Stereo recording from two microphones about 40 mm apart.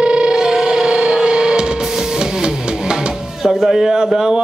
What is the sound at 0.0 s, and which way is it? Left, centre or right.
Music, right.